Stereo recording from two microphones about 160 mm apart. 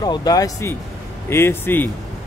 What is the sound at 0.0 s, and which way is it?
A man's voice, 25° left (ahead or behind).